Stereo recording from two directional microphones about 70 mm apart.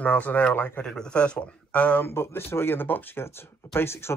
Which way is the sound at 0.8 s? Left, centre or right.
Centre.